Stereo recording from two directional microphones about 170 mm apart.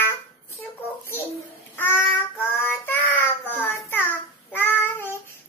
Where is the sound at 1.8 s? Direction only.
10° left (ahead or behind).